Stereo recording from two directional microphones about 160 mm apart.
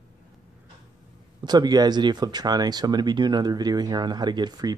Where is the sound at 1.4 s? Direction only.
25° right (ahead or behind).